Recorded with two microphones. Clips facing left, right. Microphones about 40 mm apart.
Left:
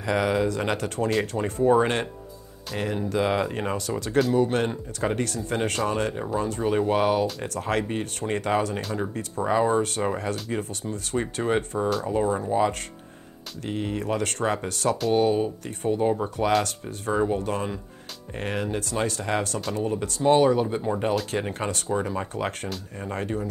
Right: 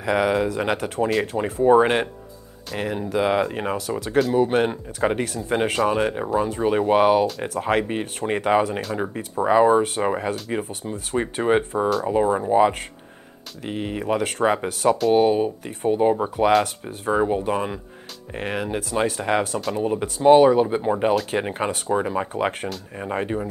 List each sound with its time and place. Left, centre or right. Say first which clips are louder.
0.0 s speech: right 3 dB; centre
6.6 s speech: right 5 dB; right
13.7 s speech: right 3 dB; centre